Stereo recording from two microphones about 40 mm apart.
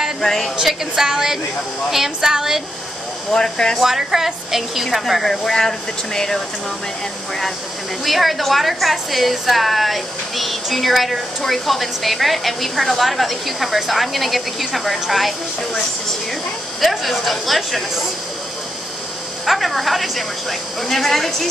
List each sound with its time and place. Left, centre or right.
0.2 s speech: centre
0.6 s a woman's voice: centre
3.3 s speech: centre
3.8 s a woman's voice: centre
8.0 s a woman's voice: centre
16.8 s a woman's voice: centre
19.4 s a woman's voice: centre